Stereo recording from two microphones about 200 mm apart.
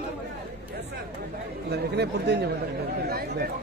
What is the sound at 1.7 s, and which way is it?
Speech, 55° right (ahead or behind).